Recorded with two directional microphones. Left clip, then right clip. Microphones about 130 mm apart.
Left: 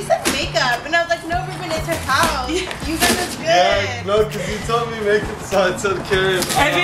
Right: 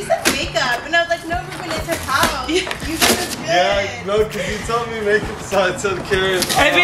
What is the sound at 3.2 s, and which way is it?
Speech, 10° left (ahead or behind).